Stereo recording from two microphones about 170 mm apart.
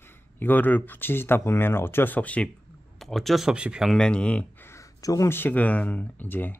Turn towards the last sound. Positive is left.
turn(degrees=10)  # may be behind; listen again after turning